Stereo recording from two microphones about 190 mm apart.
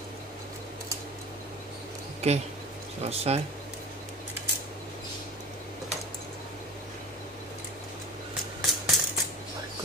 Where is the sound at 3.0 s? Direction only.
35° right (ahead or behind).